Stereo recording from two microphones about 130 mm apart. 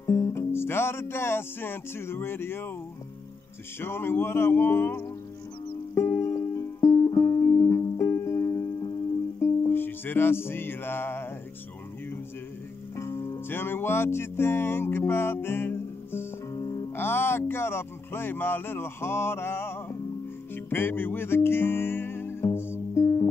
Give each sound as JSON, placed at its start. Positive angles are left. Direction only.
{"t": 0.0, "sound": "music", "side_deg": 20}
{"t": 3.8, "sound": "speech", "side_deg": 15}
{"t": 5.9, "sound": "music", "side_deg": 20}
{"t": 12.9, "sound": "music", "side_deg": 20}
{"t": 16.5, "sound": "music", "side_deg": 30}
{"t": 16.9, "sound": "speech", "side_deg": 15}
{"t": 20.5, "sound": "music", "side_deg": 15}